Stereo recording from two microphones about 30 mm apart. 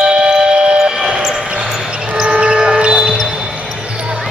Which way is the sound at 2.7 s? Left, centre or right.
Right.